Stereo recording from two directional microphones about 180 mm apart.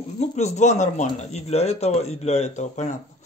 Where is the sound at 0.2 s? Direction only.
40° left (ahead or behind).